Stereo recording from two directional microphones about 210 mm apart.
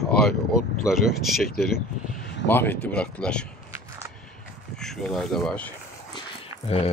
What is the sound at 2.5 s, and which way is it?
Speech, 10° left (ahead or behind).